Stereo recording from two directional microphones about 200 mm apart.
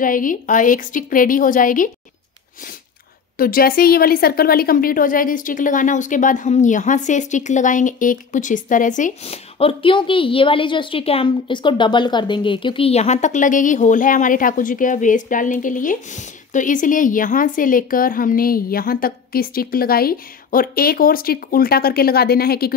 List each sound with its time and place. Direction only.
0.0 s a woman's voice: 40° left (ahead or behind)
3.3 s a woman's voice: 45° left (ahead or behind)